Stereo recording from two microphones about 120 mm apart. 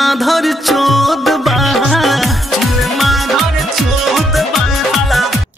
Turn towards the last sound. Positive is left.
turn(degrees=0)  # may be behind; listen again after turning